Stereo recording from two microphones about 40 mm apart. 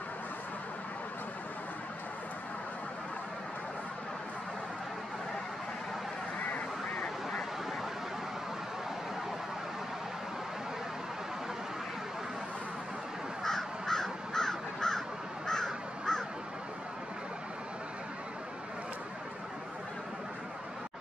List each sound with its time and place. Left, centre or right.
6.5 s quack: left
13.4 s crow: centre